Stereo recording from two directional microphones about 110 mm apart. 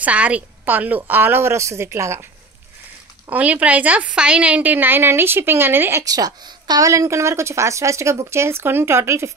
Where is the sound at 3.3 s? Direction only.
10° right (ahead or behind).